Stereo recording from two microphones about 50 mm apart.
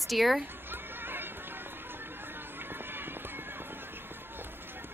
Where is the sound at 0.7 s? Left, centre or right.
Right.